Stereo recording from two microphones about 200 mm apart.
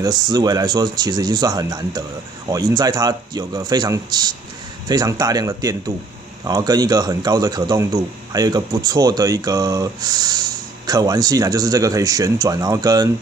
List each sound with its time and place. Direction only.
0.0 s a man's voice: 20° right (ahead or behind)